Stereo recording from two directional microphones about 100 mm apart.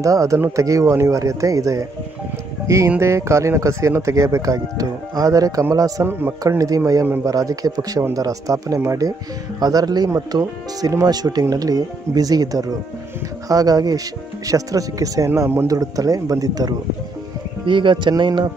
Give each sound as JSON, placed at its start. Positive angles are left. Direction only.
{"t": 0.0, "sound": "speech", "side_deg": -35}
{"t": 3.0, "sound": "speech", "side_deg": -30}
{"t": 17.6, "sound": "speech", "side_deg": -55}